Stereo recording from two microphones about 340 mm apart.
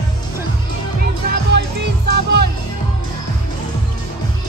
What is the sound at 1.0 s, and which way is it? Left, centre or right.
Music, right.